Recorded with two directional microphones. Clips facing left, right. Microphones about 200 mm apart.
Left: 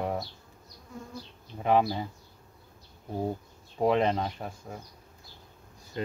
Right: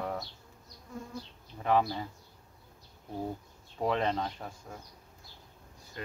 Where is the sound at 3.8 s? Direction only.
15° left (ahead or behind).